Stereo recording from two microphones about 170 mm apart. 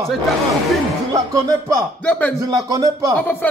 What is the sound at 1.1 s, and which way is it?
Music, 20° right (ahead or behind).